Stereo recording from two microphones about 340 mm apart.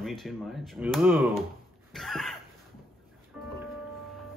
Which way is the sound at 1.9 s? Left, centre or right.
Centre.